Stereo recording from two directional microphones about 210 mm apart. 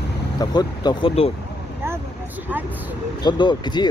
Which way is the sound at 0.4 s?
20° left (ahead or behind).